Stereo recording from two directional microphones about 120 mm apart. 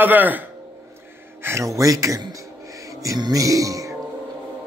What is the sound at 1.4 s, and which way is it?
Speech, 25° right (ahead or behind).